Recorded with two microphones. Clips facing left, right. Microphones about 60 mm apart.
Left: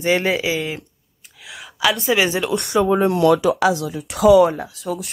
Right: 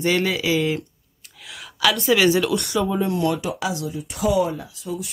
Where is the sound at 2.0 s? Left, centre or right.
Centre.